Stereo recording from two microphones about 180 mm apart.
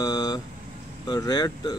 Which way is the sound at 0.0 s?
20° left (ahead or behind).